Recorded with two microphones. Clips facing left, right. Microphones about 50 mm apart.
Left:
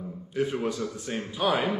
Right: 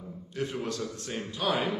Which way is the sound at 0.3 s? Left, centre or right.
Centre.